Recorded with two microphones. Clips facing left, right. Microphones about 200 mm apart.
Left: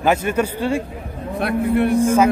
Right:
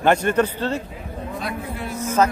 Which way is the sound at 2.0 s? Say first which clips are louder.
Left 1 dB; 10° left (ahead or behind).